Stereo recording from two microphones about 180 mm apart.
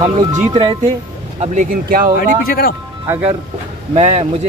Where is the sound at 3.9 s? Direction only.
40° right (ahead or behind).